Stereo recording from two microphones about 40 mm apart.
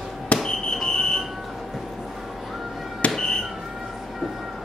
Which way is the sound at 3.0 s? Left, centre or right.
Left.